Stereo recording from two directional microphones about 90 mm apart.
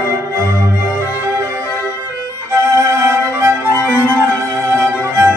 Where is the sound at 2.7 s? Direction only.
35° right (ahead or behind).